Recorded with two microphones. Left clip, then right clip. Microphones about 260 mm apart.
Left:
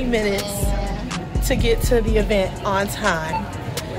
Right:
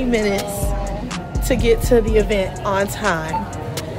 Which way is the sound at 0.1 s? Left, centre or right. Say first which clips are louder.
Right 1 dB; centre.